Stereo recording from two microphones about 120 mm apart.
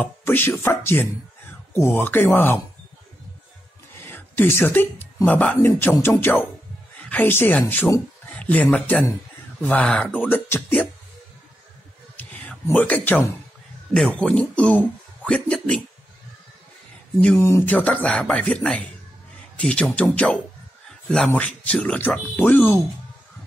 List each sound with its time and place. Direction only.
0.0 s speech: 15° left (ahead or behind)
4.0 s speech: 20° left (ahead or behind)
12.2 s a sound: 15° left (ahead or behind)
12.6 s speech: 15° left (ahead or behind)
17.4 s speech: 20° left (ahead or behind)